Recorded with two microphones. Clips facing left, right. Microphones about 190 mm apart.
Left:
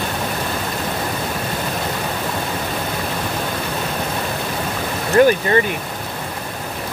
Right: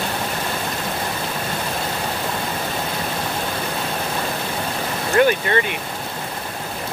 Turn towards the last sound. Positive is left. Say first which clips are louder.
# left 4 dB
turn(degrees=35)  # may be behind; listen again after turning